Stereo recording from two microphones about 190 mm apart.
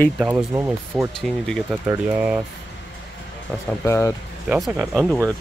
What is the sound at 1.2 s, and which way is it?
Speech, 5° left (ahead or behind).